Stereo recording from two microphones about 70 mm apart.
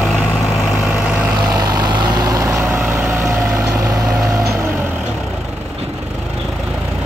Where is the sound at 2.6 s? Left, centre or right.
Right.